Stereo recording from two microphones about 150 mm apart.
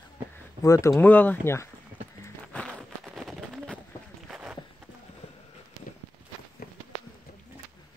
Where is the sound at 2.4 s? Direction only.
5° left (ahead or behind).